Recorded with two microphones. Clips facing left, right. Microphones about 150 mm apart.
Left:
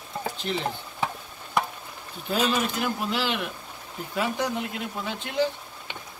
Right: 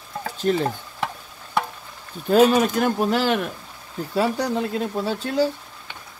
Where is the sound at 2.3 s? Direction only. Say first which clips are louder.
Right 9 dB; 45° right (ahead or behind).